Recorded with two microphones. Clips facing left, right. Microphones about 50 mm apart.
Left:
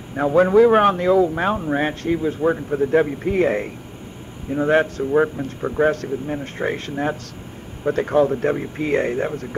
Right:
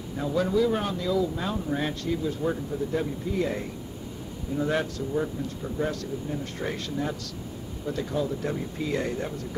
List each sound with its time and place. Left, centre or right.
0.1 s a man's voice: left
2.5 s a man's voice: left
5.1 s a man's voice: left
7.8 s a man's voice: left